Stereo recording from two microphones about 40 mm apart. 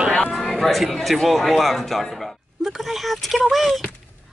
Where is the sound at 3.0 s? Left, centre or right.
Centre.